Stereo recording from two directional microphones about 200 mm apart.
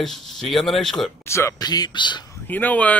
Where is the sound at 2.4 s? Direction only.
10° left (ahead or behind).